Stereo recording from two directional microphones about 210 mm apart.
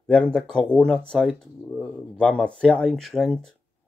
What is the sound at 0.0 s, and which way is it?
Speech, 5° left (ahead or behind).